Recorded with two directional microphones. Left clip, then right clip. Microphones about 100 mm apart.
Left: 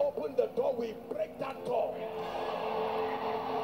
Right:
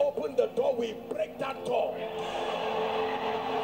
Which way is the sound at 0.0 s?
25° right (ahead or behind).